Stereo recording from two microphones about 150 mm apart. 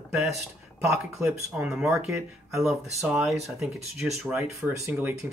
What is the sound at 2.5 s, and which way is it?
Speech, centre (ahead or behind).